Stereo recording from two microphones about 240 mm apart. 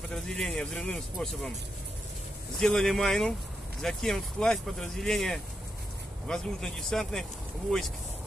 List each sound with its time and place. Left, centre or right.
0.1 s speech: centre
2.6 s speech: centre